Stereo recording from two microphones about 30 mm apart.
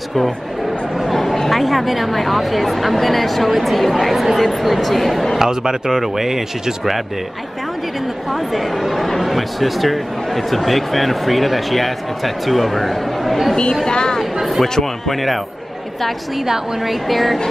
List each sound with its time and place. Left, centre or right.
0.9 s speech: centre
5.4 s speech: right
8.3 s speech: centre
13.8 s a woman's voice: left
14.6 s speech: centre
16.8 s speech: centre